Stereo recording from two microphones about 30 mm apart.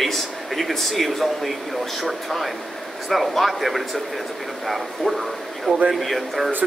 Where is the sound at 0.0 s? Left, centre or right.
Centre.